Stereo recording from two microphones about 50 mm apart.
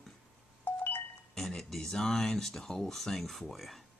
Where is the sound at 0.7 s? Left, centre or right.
Left.